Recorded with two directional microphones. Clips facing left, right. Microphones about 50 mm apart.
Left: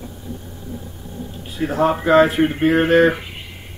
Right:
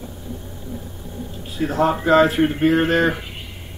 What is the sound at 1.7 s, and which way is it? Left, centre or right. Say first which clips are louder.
Speech: left 1 dB; centre.